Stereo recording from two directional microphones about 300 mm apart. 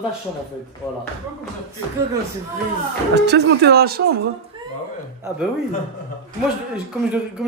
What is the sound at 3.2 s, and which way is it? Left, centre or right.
Speech, right.